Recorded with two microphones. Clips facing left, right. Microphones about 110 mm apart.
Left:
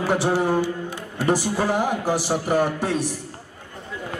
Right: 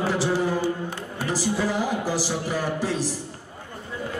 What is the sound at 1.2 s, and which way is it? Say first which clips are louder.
A man's voice: left 4 dB; 55° left (ahead or behind).